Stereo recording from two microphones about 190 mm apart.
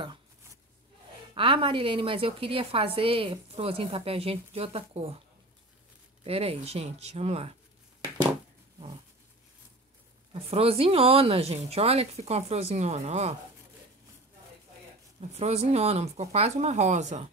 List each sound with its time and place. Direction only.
1.3 s a woman's voice: 25° right (ahead or behind)
6.2 s speech: 30° right (ahead or behind)
10.3 s speech: 30° right (ahead or behind)
15.1 s speech: 35° right (ahead or behind)